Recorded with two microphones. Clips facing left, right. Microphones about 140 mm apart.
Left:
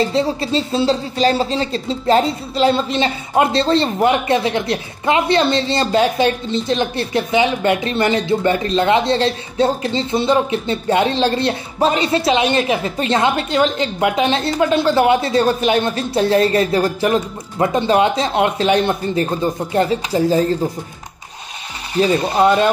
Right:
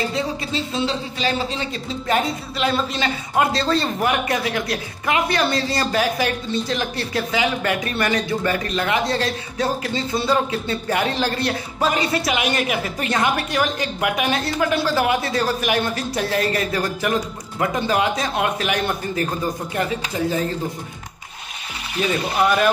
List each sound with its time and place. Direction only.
0.0 s speech: 30° left (ahead or behind)
21.9 s speech: 30° left (ahead or behind)